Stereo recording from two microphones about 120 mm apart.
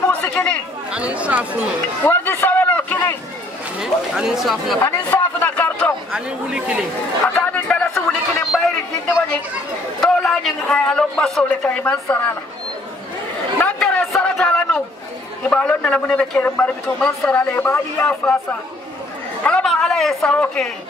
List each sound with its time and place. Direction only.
0.4 s speech: 20° left (ahead or behind)
0.9 s speech: 10° right (ahead or behind)
2.0 s a sound: 20° left (ahead or behind)
3.8 s a man's voice: 5° right (ahead or behind)
5.1 s a man's voice: 15° left (ahead or behind)
6.1 s speech: 5° right (ahead or behind)
7.3 s a sound: 15° left (ahead or behind)
9.9 s a man's voice: 5° left (ahead or behind)
13.6 s chatter: 10° left (ahead or behind)
14.1 s a sound: 5° left (ahead or behind)
15.5 s a man's voice: 10° left (ahead or behind)
17.0 s a man's voice: 5° left (ahead or behind)
17.4 s a man's voice: 15° left (ahead or behind)